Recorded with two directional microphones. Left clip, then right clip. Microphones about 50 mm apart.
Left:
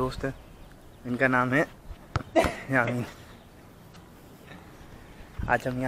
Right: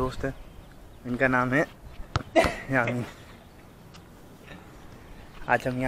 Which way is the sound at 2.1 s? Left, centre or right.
Right.